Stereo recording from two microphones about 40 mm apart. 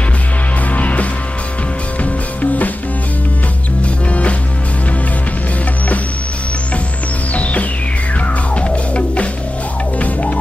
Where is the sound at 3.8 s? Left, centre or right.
Left.